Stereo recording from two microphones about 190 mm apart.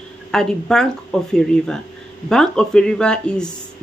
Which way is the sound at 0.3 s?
5° left (ahead or behind).